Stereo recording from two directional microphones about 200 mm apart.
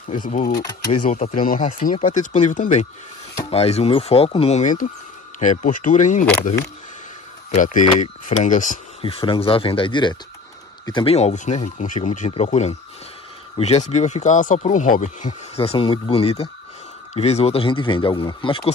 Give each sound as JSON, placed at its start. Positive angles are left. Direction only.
{"t": 0.2, "sound": "speech", "side_deg": 35}
{"t": 0.6, "sound": "speech", "side_deg": 20}
{"t": 1.0, "sound": "speech", "side_deg": 40}
{"t": 7.5, "sound": "speech", "side_deg": 40}
{"t": 9.0, "sound": "speech", "side_deg": 25}